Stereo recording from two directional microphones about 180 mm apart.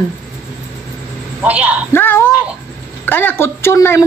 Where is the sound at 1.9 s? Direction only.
10° left (ahead or behind).